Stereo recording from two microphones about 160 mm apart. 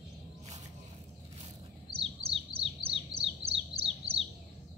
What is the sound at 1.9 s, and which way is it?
Bird, 35° right (ahead or behind).